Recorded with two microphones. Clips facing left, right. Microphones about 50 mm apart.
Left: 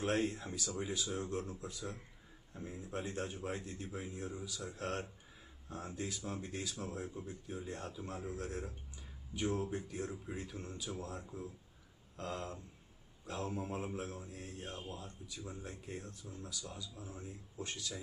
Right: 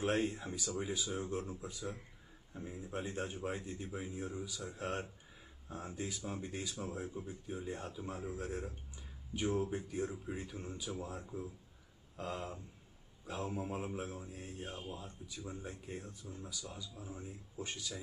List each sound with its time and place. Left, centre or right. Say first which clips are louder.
0.3 s speech: right 1 dB; centre
15.4 s speech: right 2 dB; centre
15.8 s speech: even; centre